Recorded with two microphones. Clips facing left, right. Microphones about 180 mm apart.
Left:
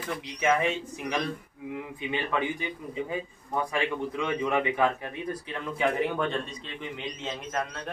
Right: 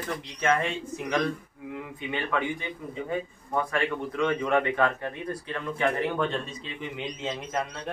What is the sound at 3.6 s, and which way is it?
A man's voice, 10° left (ahead or behind).